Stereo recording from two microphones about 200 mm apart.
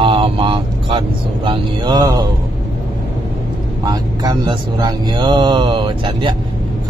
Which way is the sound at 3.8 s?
20° right (ahead or behind).